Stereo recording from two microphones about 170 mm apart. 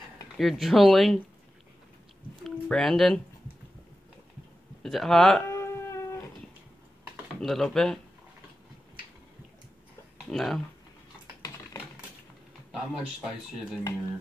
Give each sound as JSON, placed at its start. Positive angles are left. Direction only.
{"t": 0.4, "sound": "speech", "side_deg": 0}
{"t": 2.4, "sound": "speech", "side_deg": 0}
{"t": 4.8, "sound": "speech", "side_deg": 0}
{"t": 5.5, "sound": "a sound", "side_deg": 15}
{"t": 7.3, "sound": "speech", "side_deg": 0}
{"t": 10.3, "sound": "speech", "side_deg": 0}
{"t": 12.7, "sound": "speech", "side_deg": -5}